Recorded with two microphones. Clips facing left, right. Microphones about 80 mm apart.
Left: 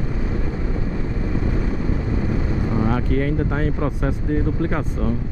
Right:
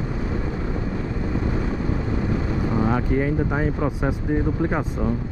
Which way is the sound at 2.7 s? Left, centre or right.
Centre.